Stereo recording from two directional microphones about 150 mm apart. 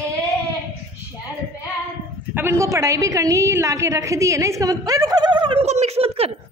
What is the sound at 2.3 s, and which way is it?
A woman's voice, 15° right (ahead or behind).